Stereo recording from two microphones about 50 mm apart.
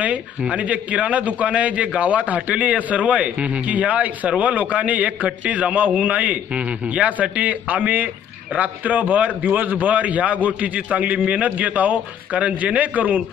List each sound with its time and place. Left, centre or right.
0.0 s a man's voice: right